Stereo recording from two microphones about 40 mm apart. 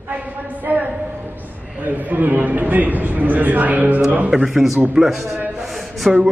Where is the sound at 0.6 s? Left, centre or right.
Right.